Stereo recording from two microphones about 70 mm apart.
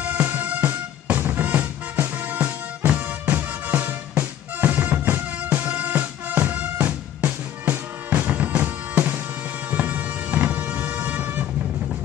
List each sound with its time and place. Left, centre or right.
0.0 s music: right